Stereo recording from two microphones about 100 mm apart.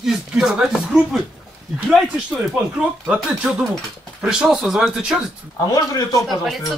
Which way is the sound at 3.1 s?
10° right (ahead or behind).